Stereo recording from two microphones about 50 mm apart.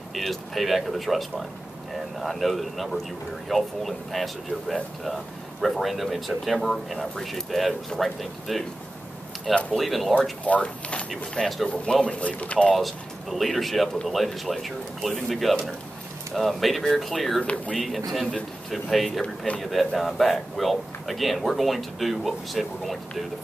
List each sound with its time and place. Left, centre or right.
0.1 s a man's voice: centre
9.7 s a man's voice: centre
10.4 s speech: left
11.1 s speech: centre
11.7 s speech: centre
12.7 s a man's voice: centre
19.2 s speech: left
19.6 s a man's voice: centre